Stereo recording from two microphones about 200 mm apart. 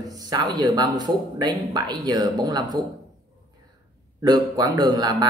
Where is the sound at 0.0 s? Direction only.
20° right (ahead or behind).